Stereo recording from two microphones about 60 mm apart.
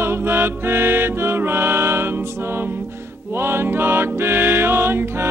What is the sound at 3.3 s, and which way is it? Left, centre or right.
Music, right.